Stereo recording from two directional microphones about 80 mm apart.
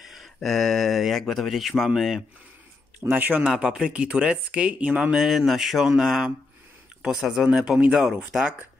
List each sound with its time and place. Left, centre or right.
0.0 s speech: centre
3.1 s speech: right
3.4 s speech: centre
5.2 s speech: centre